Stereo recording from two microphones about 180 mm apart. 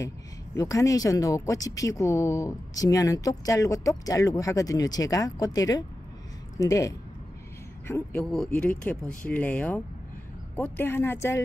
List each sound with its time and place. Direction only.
0.6 s a woman's voice: 20° left (ahead or behind)